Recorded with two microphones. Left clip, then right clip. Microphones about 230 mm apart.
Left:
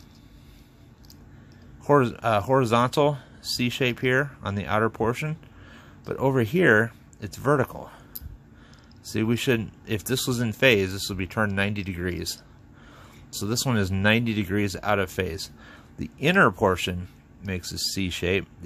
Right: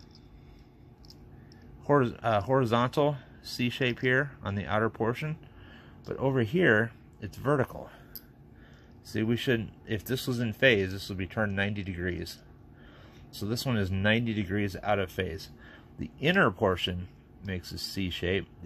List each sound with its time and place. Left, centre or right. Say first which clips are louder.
1.9 s speech: left 5 dB; centre
9.0 s speech: left 5 dB; centre